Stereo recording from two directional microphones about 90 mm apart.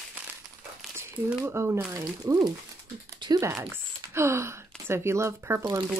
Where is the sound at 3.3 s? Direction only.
35° right (ahead or behind).